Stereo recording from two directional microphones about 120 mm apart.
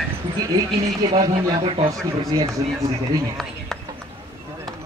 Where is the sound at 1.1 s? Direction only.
50° right (ahead or behind).